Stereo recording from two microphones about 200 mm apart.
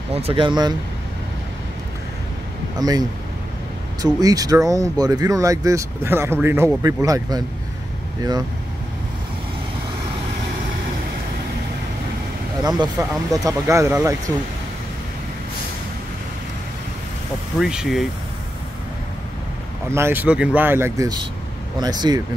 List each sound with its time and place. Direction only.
0.1 s speech: 30° right (ahead or behind)
2.8 s speech: 20° right (ahead or behind)
12.6 s speech: 20° right (ahead or behind)
17.6 s speech: 5° right (ahead or behind)
19.9 s speech: 10° right (ahead or behind)